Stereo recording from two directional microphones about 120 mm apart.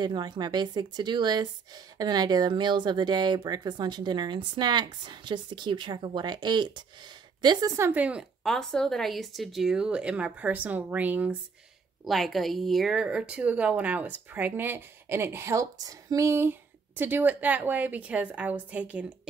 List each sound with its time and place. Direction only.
0.0 s speech: 35° right (ahead or behind)
7.4 s speech: 25° right (ahead or behind)
8.0 s a woman's voice: 10° right (ahead or behind)
8.5 s a woman's voice: 5° left (ahead or behind); by 11.3 s 15° right (ahead or behind)
12.0 s a woman's voice: centre (ahead or behind)